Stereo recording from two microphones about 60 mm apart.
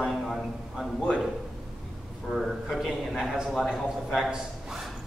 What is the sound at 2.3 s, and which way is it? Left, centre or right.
A man's voice, centre.